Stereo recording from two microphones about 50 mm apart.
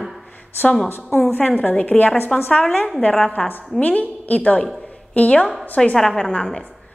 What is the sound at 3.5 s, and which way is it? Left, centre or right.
A woman's voice, left.